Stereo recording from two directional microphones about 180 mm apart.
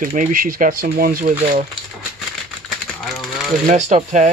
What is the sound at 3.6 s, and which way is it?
Speech, 40° right (ahead or behind).